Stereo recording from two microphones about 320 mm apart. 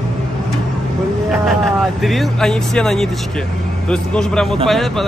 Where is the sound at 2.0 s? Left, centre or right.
Centre.